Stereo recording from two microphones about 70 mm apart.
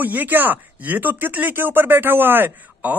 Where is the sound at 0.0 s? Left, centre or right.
Right.